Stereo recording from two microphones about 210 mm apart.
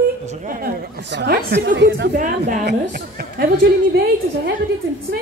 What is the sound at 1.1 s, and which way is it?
Speech, 55° right (ahead or behind).